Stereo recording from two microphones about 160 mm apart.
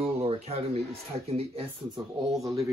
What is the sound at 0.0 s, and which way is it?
Speech, 40° right (ahead or behind).